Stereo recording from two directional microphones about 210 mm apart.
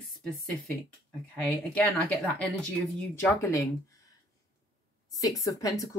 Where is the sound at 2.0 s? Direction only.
Centre (ahead or behind).